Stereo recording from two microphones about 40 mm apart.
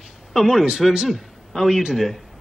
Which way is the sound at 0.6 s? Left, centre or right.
Centre.